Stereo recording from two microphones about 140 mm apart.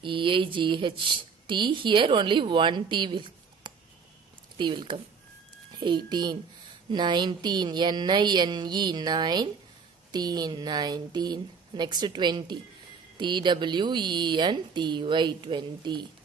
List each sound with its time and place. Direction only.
0.0 s a woman's voice: 35° right (ahead or behind)